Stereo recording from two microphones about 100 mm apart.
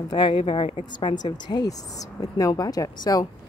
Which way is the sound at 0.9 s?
45° left (ahead or behind).